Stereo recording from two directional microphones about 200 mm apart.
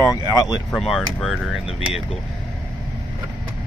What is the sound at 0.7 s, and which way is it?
Speech, centre (ahead or behind).